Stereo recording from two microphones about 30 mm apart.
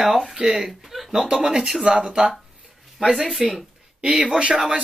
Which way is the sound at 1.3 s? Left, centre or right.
Right.